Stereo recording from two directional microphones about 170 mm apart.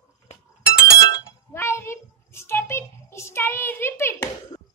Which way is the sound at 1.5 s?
15° left (ahead or behind).